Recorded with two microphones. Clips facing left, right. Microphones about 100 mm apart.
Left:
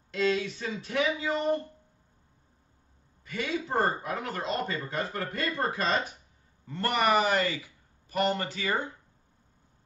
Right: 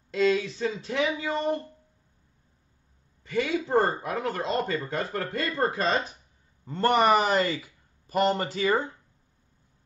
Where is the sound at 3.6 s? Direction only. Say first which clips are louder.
Right 4 dB; 25° right (ahead or behind).